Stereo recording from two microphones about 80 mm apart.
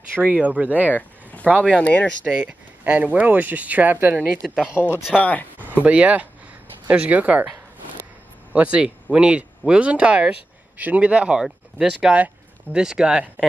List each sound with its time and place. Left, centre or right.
0.2 s speech: centre
0.9 s a sound: centre
1.8 s speech: centre
2.2 s speech: centre
4.7 s speech: left
5.8 s speech: centre
8.5 s speech: centre
11.4 s speech: centre